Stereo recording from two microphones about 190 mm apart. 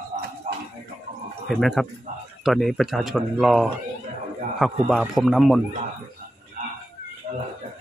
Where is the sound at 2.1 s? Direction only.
40° right (ahead or behind).